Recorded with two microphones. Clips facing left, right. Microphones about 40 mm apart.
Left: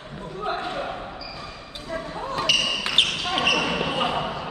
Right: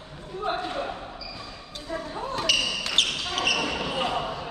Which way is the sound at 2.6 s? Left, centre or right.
Left.